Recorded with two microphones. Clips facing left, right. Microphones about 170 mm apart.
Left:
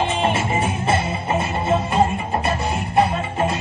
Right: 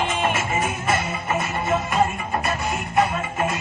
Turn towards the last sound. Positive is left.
turn(degrees=30)  # may be behind; listen again after turning